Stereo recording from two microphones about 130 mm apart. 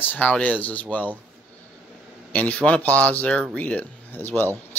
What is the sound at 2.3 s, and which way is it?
Speech, 10° left (ahead or behind).